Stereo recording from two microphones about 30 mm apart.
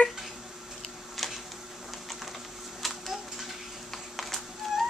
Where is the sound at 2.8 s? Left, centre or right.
Centre.